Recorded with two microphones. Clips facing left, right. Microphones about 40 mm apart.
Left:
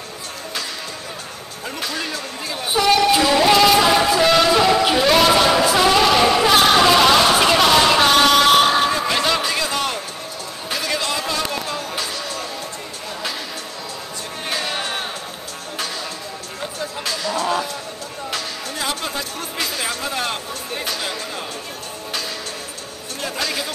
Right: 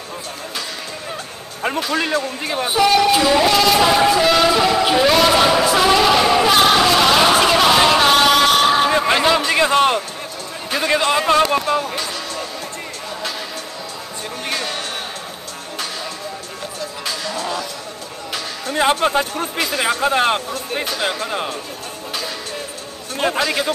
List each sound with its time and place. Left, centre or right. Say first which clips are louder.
1.9 s speech: right 5 dB; right
2.7 s speech: right 1 dB; centre
3.4 s music: even; centre
7.2 s a sound: right 1 dB; centre
8.9 s a sound: right 4 dB; right
9.5 s a sound: right 8 dB; right
11.9 s a sound: right 1 dB; centre
17.0 s music: left 3 dB; centre
18.7 s music: right 10 dB; right
19.5 s speech: right 1 dB; centre
19.9 s speech: right 8 dB; right
21.0 s speech: right 5 dB; centre
23.2 s speech: right 9 dB; right